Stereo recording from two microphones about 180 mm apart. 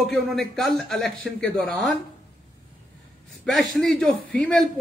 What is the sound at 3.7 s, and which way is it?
Speech, 5° left (ahead or behind).